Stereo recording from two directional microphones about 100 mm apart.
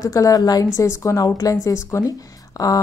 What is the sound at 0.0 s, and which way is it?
Speech, 35° left (ahead or behind).